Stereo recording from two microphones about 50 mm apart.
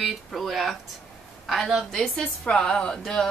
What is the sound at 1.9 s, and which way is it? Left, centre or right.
A woman's voice, centre.